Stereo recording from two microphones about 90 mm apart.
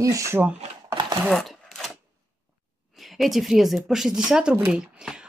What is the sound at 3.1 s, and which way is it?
Speech, centre (ahead or behind).